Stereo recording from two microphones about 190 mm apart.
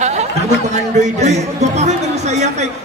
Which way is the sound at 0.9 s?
35° right (ahead or behind).